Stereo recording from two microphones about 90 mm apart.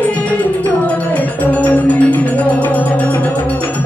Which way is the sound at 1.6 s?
15° left (ahead or behind).